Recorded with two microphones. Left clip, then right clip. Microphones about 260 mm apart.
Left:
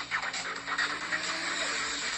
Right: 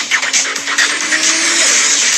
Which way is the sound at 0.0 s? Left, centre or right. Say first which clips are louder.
Right 19 dB; right.